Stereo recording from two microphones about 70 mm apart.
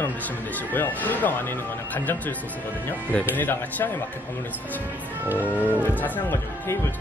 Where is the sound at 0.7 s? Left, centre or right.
Left.